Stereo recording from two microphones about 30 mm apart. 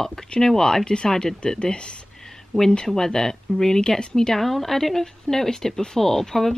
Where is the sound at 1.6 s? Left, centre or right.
Left.